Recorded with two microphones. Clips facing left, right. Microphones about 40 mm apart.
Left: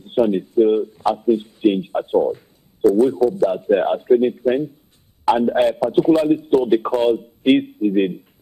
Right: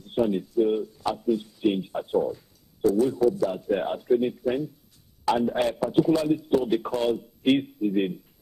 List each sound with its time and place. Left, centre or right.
0.3 s a man's voice: left